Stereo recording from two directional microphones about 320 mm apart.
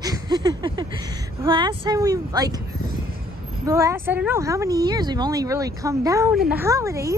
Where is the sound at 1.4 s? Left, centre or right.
Centre.